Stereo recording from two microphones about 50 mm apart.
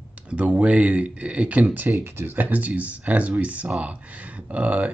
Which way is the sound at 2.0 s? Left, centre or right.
Right.